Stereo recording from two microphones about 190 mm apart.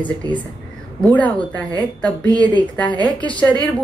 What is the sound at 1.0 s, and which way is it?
A woman's voice, 5° left (ahead or behind).